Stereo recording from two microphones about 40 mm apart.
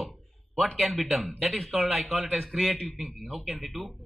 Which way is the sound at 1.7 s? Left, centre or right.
Centre.